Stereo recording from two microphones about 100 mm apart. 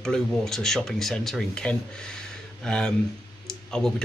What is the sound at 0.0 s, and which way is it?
Speech, 5° left (ahead or behind).